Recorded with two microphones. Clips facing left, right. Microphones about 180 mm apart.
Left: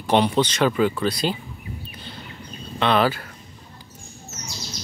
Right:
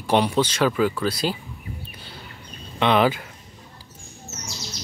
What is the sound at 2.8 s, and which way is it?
Speech, 15° right (ahead or behind).